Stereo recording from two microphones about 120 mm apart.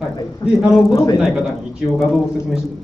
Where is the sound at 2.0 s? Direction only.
Centre (ahead or behind).